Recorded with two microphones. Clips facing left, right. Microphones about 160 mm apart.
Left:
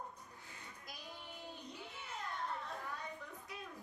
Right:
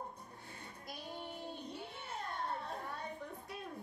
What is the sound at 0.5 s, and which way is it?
Music, 30° right (ahead or behind).